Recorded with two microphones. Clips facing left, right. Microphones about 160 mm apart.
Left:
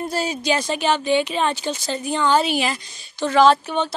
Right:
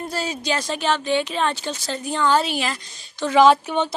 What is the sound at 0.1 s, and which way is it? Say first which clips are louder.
A woman's voice: left 2 dB; 15° left (ahead or behind).